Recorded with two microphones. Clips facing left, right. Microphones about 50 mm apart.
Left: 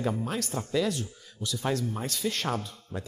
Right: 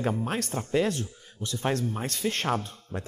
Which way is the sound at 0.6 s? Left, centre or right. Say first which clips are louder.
Right 2 dB; right.